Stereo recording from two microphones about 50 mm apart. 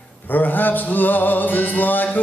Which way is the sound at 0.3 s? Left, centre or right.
Left.